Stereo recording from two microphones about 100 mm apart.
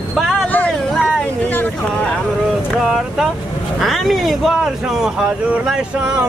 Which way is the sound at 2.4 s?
Centre (ahead or behind).